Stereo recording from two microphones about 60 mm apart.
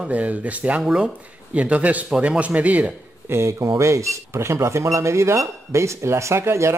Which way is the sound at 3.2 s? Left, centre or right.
Right.